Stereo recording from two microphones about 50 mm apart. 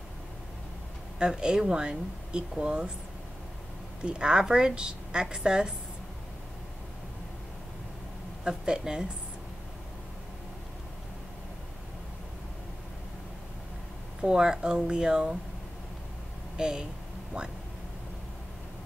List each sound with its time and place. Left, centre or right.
1.2 s a woman's voice: centre
4.0 s a woman's voice: centre
8.5 s a woman's voice: centre
14.2 s a woman's voice: centre
16.5 s speech: centre